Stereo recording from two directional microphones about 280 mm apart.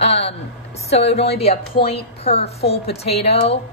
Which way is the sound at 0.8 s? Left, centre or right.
Left.